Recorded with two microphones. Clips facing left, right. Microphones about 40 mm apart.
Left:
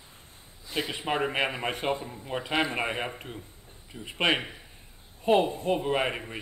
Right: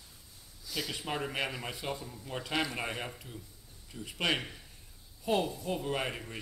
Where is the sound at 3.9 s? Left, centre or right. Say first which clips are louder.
Left 6 dB; left.